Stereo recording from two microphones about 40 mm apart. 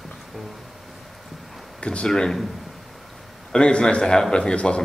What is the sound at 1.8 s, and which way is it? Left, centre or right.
Speech, left.